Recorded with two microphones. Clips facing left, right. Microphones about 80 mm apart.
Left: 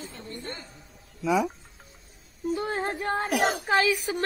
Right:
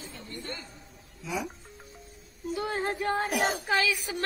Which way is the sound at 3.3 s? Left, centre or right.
Left.